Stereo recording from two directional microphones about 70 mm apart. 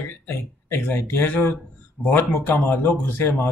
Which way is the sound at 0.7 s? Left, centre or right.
Left.